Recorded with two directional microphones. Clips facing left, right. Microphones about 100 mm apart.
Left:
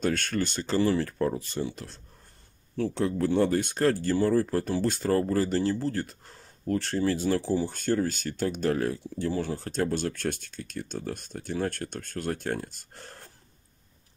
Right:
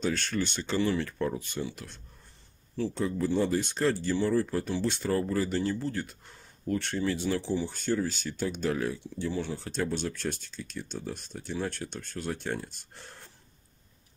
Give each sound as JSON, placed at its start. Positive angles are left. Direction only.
{"t": 0.0, "sound": "speech", "side_deg": 55}
{"t": 2.8, "sound": "speech", "side_deg": 65}